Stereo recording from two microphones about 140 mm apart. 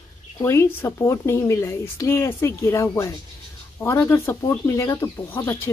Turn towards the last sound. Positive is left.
turn(degrees=15)  # may be behind; listen again after turning